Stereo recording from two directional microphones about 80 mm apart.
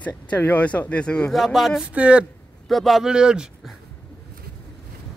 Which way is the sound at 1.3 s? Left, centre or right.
Centre.